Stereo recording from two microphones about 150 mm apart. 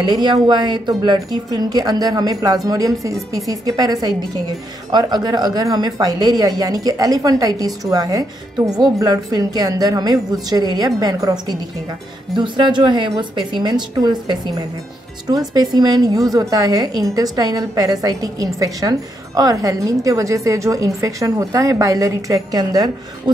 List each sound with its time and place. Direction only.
0.0 s a woman's voice: 30° right (ahead or behind)